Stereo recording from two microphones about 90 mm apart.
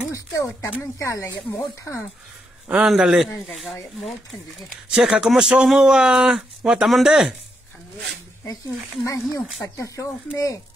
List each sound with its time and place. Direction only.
0.1 s speech: 35° left (ahead or behind)
2.7 s a man's voice: 5° right (ahead or behind)
4.9 s a man's voice: 5° right (ahead or behind)
9.0 s speech: 40° left (ahead or behind)